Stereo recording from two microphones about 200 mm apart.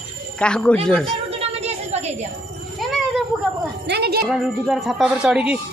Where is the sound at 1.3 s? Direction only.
30° right (ahead or behind).